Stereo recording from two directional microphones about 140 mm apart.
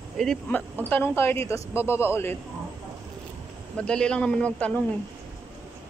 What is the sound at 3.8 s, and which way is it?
A man's voice, 5° left (ahead or behind).